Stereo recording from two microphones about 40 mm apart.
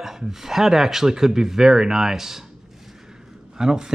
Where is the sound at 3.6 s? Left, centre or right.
Centre.